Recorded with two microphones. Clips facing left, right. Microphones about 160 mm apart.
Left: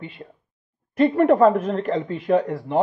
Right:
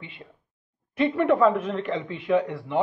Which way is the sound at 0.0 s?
40° left (ahead or behind).